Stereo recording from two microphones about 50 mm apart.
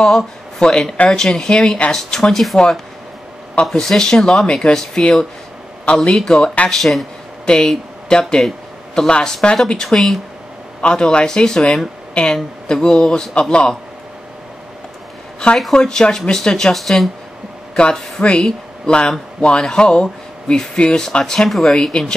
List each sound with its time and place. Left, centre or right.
0.0 s speech: centre
6.7 s speech: centre
7.4 s speech: centre
10.8 s speech: centre
15.7 s speech: centre
17.7 s speech: left
21.5 s speech: centre
21.7 s speech: centre